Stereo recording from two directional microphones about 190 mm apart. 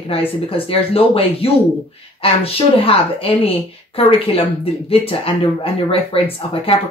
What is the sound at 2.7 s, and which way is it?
A woman's voice, 30° left (ahead or behind).